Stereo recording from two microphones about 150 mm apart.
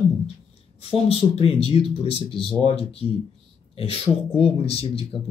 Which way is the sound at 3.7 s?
40° left (ahead or behind).